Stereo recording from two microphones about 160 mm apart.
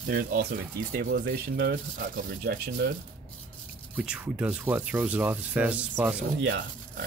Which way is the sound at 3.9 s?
5° right (ahead or behind).